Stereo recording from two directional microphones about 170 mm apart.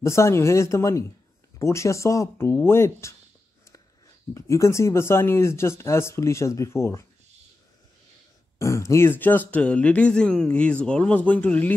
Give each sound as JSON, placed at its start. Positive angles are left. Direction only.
{"t": 0.0, "sound": "speech", "side_deg": 15}
{"t": 4.3, "sound": "speech", "side_deg": 15}
{"t": 8.5, "sound": "speech", "side_deg": 15}